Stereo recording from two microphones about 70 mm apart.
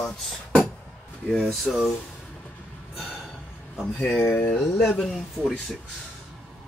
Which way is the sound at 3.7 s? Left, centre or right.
Centre.